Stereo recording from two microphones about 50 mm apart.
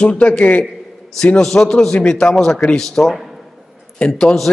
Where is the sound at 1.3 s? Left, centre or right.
Centre.